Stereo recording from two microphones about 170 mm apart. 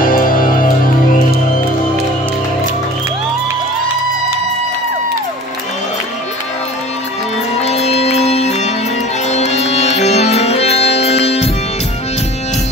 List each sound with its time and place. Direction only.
0.0 s music: 55° left (ahead or behind)
7.6 s music: 40° left (ahead or behind)